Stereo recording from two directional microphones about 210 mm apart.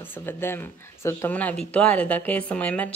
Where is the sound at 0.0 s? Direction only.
10° left (ahead or behind).